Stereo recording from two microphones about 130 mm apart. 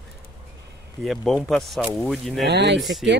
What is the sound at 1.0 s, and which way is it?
Speech, centre (ahead or behind).